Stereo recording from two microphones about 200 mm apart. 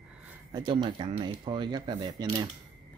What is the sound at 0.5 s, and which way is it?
Speech, 25° right (ahead or behind).